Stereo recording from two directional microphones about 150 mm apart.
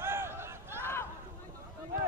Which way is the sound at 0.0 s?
15° right (ahead or behind).